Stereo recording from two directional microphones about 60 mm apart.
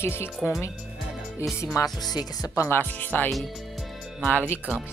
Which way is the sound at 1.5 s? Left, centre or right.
Left.